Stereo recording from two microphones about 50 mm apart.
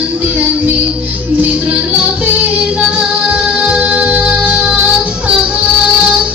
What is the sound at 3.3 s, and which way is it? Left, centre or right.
Music, right.